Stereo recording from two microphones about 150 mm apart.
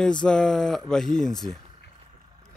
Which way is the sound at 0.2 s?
5° left (ahead or behind).